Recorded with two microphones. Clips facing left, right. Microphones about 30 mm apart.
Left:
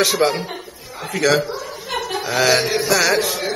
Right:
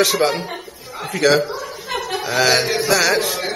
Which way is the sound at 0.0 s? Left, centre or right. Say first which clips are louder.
Even; centre.